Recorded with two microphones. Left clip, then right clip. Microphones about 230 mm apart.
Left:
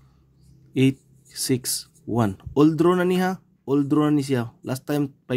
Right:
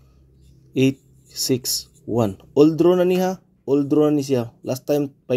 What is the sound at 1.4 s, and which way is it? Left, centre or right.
Speech, left.